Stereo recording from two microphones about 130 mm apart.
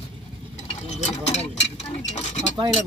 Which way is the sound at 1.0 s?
60° left (ahead or behind).